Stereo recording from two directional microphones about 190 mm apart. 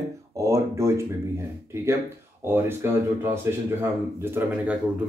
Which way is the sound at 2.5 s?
10° right (ahead or behind).